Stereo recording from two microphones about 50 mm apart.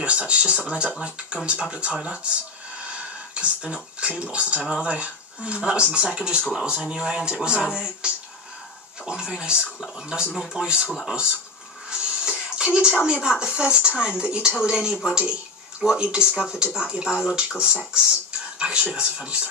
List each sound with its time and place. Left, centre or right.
0.0 s speech: right
2.8 s a sound: right
4.2 s speech: right
11.9 s music: centre
13.0 s speech: centre